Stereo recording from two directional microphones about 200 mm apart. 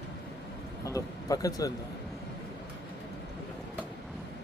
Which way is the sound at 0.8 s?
15° left (ahead or behind).